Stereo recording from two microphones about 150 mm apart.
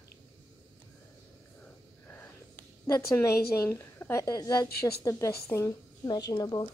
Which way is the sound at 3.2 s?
15° left (ahead or behind).